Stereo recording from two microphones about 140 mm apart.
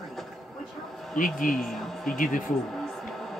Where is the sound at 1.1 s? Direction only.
70° left (ahead or behind).